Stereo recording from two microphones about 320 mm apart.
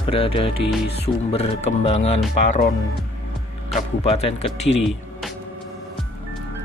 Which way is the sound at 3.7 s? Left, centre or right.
Centre.